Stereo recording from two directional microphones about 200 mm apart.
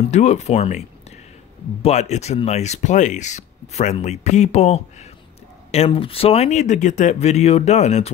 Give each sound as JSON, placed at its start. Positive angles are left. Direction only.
{"t": 0.1, "sound": "speech", "side_deg": 35}